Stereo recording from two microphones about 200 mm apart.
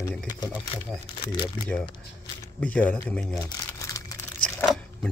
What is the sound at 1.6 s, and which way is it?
Speech, 5° left (ahead or behind).